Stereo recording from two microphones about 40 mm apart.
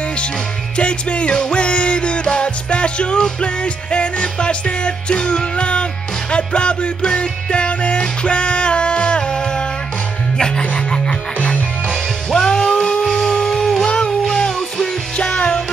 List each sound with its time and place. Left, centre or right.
0.7 s music: left
11.4 s music: left
12.3 s music: centre
13.8 s a sound: left
14.2 s music: centre